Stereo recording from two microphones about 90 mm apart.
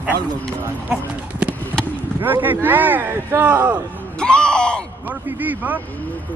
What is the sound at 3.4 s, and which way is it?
Speech, 15° right (ahead or behind).